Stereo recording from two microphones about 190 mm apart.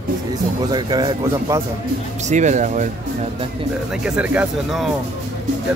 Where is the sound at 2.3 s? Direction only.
40° right (ahead or behind).